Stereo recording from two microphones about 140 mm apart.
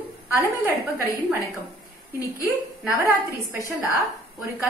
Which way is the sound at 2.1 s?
15° right (ahead or behind).